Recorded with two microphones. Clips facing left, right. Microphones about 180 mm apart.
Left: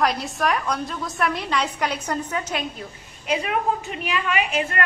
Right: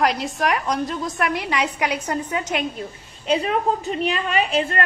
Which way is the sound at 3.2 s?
30° right (ahead or behind).